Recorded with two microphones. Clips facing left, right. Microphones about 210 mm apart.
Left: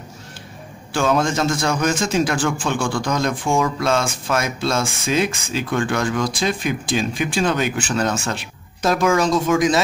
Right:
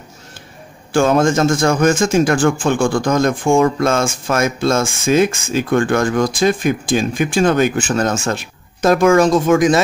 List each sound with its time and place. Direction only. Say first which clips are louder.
0.9 s speech: right 6 dB; 45° right (ahead or behind)